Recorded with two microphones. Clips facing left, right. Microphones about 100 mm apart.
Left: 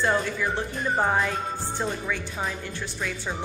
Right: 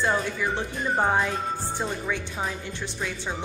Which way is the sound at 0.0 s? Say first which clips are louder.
Left 1 dB; 15° right (ahead or behind).